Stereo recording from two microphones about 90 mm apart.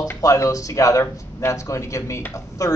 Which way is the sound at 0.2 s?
40° left (ahead or behind).